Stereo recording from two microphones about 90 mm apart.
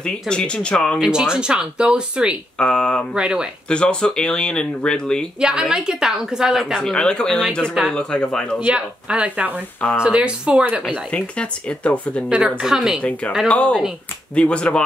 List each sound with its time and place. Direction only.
0.0 s speech: 10° left (ahead or behind)
1.0 s a woman's voice: 10° right (ahead or behind)
2.6 s speech: 10° left (ahead or behind)
3.2 s a woman's voice: 10° right (ahead or behind)
3.6 s speech: 10° left (ahead or behind)
5.4 s a woman's voice: 10° right (ahead or behind)
6.8 s speech: 10° left (ahead or behind)
8.6 s a woman's voice: 10° right (ahead or behind)
10.9 s speech: 10° left (ahead or behind)
12.4 s a woman's voice: 5° right (ahead or behind)
13.5 s speech: 15° left (ahead or behind)